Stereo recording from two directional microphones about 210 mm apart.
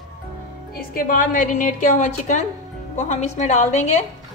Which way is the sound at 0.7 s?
45° left (ahead or behind).